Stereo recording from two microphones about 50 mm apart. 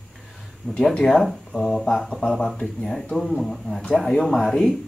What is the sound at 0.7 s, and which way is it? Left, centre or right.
Speech, centre.